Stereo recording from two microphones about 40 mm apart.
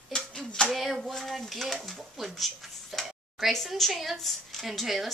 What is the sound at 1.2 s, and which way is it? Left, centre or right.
Dishes, centre.